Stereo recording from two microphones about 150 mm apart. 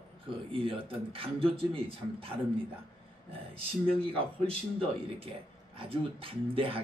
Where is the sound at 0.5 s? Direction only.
35° right (ahead or behind).